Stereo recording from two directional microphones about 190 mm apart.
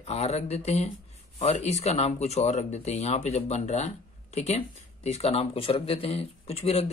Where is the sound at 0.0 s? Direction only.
35° left (ahead or behind).